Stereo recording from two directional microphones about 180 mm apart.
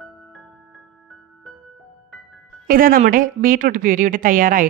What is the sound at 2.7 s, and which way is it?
A woman's voice, 50° right (ahead or behind).